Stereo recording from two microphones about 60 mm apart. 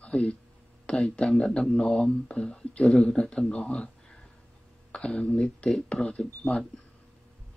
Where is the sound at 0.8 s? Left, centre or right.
Centre.